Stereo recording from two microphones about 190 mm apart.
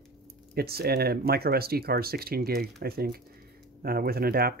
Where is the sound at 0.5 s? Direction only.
55° right (ahead or behind).